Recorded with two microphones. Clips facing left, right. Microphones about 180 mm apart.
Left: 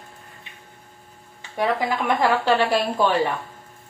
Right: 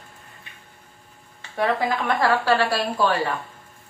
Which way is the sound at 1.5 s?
10° left (ahead or behind).